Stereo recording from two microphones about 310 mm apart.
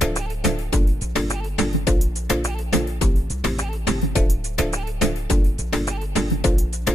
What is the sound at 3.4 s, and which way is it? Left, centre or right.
Music, centre.